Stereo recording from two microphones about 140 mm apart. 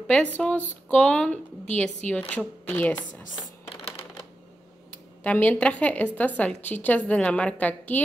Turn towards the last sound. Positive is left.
turn(degrees=10)  # may be behind; listen again after turning